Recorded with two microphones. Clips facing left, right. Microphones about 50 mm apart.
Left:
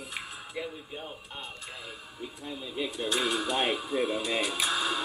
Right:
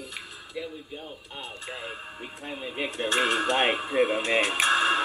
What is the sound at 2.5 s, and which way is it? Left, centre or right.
Speech, right.